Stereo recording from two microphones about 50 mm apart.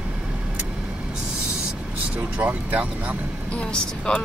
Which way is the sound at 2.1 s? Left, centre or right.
Right.